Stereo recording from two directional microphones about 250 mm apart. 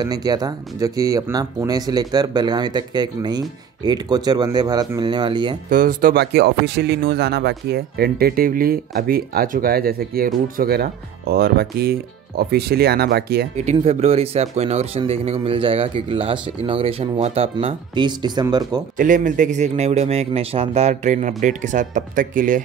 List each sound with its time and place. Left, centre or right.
0.0 s speech: centre
5.7 s speech: right
13.7 s speech: right
18.9 s speech: right